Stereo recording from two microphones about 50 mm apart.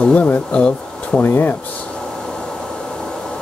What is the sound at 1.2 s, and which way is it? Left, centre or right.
Speech, left.